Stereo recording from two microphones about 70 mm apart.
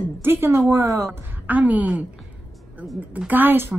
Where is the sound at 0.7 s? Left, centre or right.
Right.